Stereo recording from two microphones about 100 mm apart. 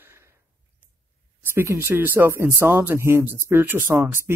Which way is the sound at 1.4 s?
20° right (ahead or behind).